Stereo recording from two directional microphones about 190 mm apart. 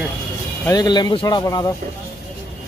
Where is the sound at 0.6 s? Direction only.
20° left (ahead or behind).